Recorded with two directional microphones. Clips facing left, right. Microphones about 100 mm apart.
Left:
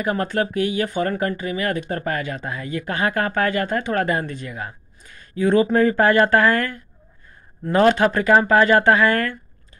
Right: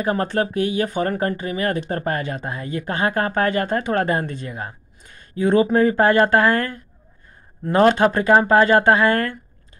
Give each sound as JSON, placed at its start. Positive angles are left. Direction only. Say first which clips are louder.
{"t": 0.0, "sound": "speech", "louder": "right 1 dB", "side_deg": -30}